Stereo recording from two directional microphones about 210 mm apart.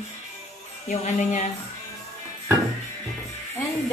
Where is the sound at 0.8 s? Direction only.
35° left (ahead or behind).